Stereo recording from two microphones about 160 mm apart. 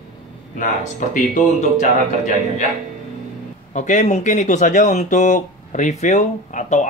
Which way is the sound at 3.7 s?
50° left (ahead or behind).